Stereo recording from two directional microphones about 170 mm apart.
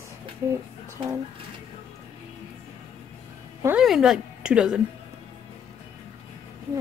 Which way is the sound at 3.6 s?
5° right (ahead or behind).